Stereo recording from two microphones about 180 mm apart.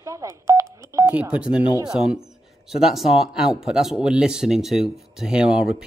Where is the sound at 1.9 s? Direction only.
5° right (ahead or behind).